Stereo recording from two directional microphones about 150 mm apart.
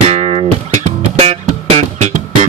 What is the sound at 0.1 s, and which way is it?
Music, 45° right (ahead or behind).